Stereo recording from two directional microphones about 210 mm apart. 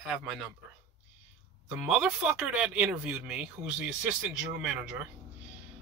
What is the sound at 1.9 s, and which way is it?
Speech, centre (ahead or behind).